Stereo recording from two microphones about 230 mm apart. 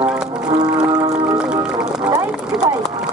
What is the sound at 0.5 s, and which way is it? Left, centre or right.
Music, centre.